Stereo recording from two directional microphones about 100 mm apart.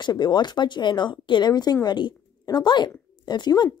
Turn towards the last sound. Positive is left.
turn(degrees=45)  # may be behind; listen again after turning